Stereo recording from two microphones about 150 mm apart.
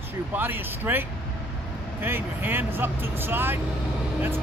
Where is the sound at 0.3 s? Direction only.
15° right (ahead or behind).